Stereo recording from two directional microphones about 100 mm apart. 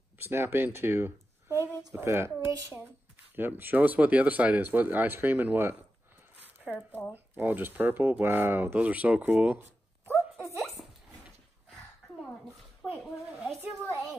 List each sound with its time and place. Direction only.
0.2 s speech: 25° right (ahead or behind)
6.6 s speech: 15° left (ahead or behind)
7.1 s speech: 20° right (ahead or behind)
12.8 s a sound: 5° right (ahead or behind)